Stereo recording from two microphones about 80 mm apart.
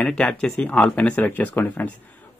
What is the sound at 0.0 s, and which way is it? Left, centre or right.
Speech, centre.